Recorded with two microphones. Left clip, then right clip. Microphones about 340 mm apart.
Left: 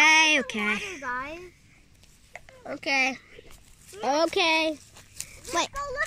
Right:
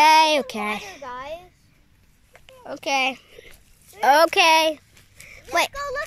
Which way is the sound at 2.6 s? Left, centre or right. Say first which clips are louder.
Right 3 dB; centre.